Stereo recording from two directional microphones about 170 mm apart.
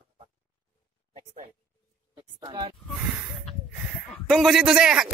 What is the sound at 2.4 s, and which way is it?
Speech, 30° right (ahead or behind).